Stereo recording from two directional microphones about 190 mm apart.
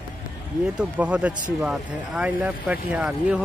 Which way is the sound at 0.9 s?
5° right (ahead or behind).